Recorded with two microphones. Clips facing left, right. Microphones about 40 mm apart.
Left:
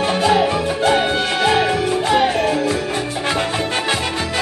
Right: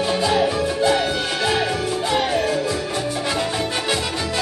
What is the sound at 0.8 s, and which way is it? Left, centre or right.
Music, left.